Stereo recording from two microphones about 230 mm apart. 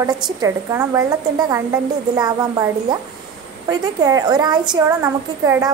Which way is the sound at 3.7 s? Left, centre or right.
Centre.